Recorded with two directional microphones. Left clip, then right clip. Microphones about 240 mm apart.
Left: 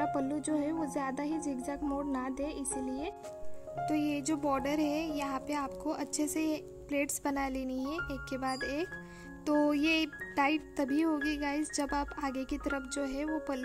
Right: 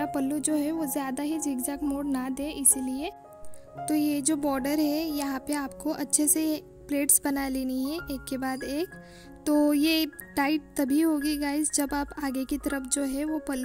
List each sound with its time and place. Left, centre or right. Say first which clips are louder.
0.0 s speech: right 4 dB; right